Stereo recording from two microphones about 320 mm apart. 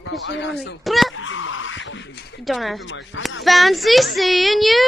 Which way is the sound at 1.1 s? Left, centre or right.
Left.